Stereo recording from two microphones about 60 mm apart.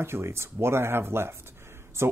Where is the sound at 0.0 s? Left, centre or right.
Right.